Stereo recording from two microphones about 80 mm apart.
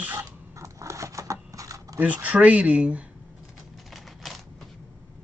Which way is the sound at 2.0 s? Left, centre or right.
Centre.